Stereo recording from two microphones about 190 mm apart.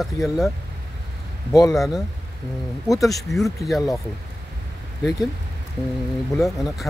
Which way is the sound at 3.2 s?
Centre (ahead or behind).